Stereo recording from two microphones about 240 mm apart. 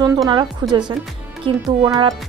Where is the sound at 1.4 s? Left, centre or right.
Centre.